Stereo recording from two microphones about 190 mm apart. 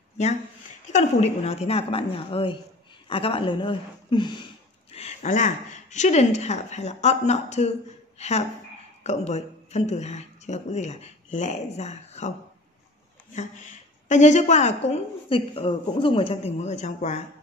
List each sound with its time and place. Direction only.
0.8 s a woman's voice: 35° left (ahead or behind)
4.9 s a woman's voice: 35° left (ahead or behind)
13.3 s a woman's voice: 40° left (ahead or behind)